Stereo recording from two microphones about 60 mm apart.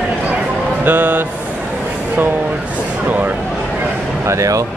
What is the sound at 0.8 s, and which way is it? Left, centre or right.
Speech, right.